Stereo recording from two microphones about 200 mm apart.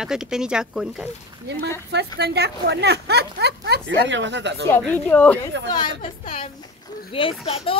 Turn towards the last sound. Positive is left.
turn(degrees=25)  # may be behind; listen again after turning